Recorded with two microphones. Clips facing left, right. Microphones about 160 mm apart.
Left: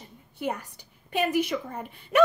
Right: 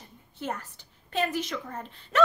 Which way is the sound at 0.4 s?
10° left (ahead or behind).